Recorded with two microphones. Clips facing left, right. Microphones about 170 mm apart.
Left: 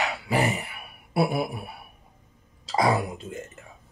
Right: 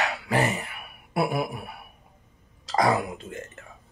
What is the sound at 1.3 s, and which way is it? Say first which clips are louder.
Speech: even; 5° left (ahead or behind).